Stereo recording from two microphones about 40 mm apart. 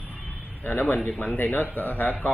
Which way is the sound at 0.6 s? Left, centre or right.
Left.